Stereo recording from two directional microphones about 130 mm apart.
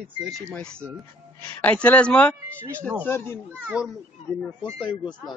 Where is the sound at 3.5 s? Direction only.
5° right (ahead or behind).